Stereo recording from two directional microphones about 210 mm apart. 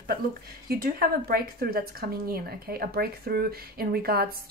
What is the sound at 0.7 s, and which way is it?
A woman's voice, 45° right (ahead or behind).